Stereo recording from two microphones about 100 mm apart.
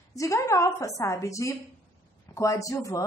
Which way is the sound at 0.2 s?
30° left (ahead or behind).